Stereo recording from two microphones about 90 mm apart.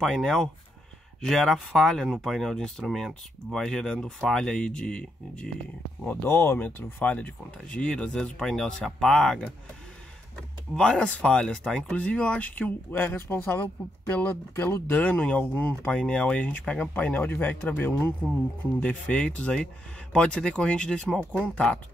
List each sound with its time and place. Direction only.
0.0 s speech: 5° left (ahead or behind)
6.0 s speech: 25° left (ahead or behind); by 9.5 s 5° left (ahead or behind)
10.7 s speech: 10° left (ahead or behind)